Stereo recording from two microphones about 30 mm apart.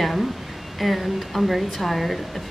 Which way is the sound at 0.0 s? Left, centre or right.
Centre.